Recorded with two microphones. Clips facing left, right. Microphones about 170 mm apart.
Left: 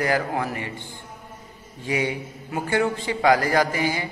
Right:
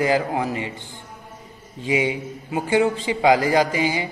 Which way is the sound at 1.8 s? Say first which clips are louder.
Right 3 dB; 15° right (ahead or behind).